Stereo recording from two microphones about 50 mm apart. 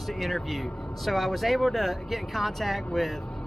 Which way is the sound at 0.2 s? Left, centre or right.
Centre.